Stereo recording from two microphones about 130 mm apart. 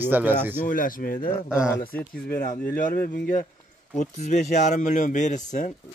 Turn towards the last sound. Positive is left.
turn(degrees=70)  # may be behind; listen again after turning